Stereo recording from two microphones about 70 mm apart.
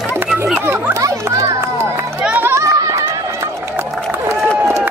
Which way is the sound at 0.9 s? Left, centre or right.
Right.